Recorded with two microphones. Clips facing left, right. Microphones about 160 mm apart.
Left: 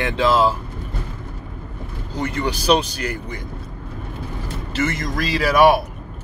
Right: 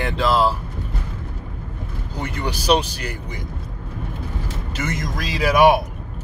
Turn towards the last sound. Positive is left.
turn(degrees=-15)  # may be behind; listen again after turning